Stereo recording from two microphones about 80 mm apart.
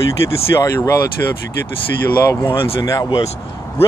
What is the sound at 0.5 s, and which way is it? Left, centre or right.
Speech, left.